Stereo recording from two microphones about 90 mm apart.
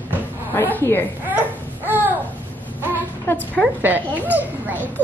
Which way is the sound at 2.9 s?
20° left (ahead or behind).